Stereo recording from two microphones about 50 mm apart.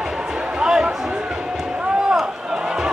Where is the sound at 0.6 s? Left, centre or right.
Centre.